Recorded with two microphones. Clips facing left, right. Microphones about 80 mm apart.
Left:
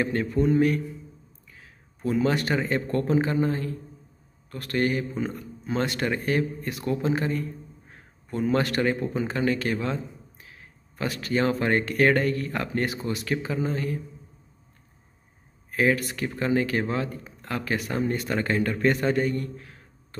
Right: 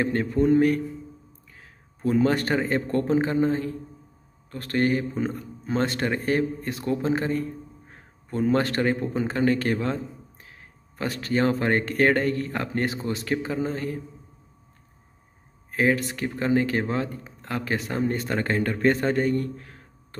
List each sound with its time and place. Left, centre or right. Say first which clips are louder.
0.0 s speech: right 2 dB; right
2.0 s speech: right 2 dB; right
15.7 s speech: right 1 dB; right